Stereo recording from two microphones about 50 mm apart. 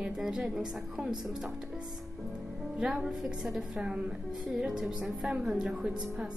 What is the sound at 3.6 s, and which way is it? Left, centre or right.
A woman's voice, centre.